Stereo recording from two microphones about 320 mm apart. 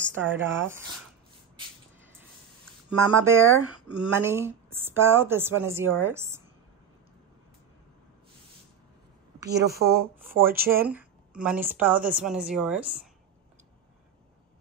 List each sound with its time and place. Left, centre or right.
0.2 s a woman's voice: centre
2.9 s a woman's voice: centre
9.5 s speech: right
10.9 s a woman's voice: centre